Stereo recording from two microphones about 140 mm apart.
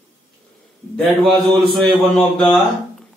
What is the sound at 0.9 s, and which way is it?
A man's voice, centre (ahead or behind).